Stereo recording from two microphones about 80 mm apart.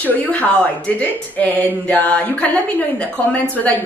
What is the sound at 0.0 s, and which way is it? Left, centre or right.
Speech, centre.